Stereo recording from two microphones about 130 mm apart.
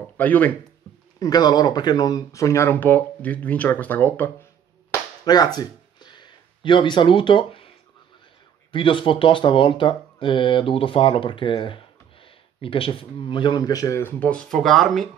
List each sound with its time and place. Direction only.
0.2 s speech: 10° left (ahead or behind)
1.2 s speech: 30° left (ahead or behind); by 4.5 s 15° left (ahead or behind)
4.9 s a sound: 30° left (ahead or behind)
8.7 s speech: 40° left (ahead or behind); by 15.0 s centre (ahead or behind)